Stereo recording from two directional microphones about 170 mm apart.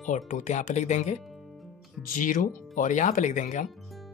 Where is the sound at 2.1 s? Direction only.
50° left (ahead or behind).